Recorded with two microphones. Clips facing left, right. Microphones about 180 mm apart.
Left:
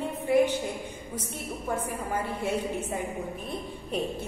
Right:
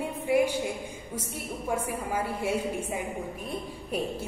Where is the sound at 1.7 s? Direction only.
10° right (ahead or behind).